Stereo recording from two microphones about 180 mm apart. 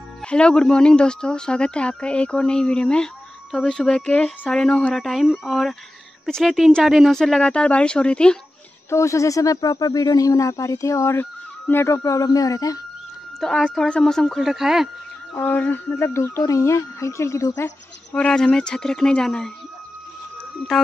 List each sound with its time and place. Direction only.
0.2 s speech: 5° left (ahead or behind)
8.9 s speech: 15° left (ahead or behind)
13.4 s speech: 5° left (ahead or behind)
15.3 s speech: 10° left (ahead or behind)
18.1 s speech: 5° left (ahead or behind)